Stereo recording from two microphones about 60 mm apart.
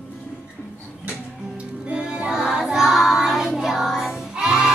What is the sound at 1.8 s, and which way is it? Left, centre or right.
Music, centre.